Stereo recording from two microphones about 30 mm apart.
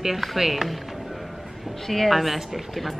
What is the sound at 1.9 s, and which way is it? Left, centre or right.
A woman's voice, centre.